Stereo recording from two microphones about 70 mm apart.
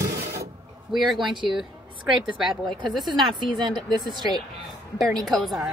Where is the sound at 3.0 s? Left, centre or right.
Right.